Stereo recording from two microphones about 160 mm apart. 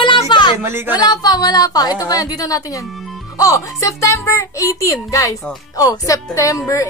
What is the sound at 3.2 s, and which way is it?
A woman's voice, 20° left (ahead or behind).